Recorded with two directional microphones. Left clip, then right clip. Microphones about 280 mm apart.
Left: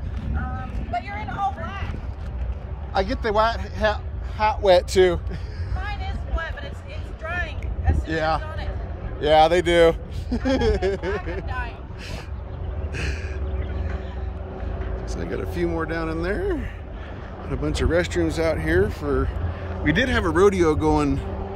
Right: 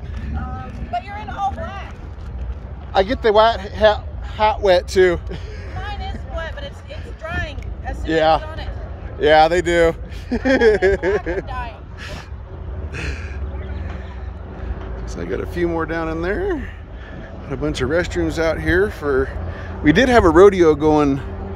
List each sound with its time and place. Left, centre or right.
0.9 s vehicle: right
2.9 s speech: centre
5.9 s vehicle: right
8.1 s speech: centre
11.4 s vehicle: right
12.9 s gasp: centre
15.0 s speech: centre